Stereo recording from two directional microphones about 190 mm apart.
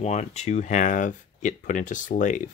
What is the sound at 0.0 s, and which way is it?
Speech, 35° left (ahead or behind).